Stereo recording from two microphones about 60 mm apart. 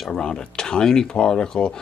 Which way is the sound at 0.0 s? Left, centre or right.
Centre.